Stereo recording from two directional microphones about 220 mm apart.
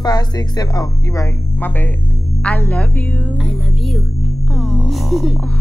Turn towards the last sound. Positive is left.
turn(degrees=0)  # may be behind; listen again after turning